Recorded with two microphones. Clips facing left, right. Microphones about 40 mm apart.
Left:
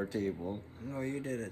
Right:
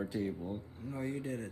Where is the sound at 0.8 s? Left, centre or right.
Left.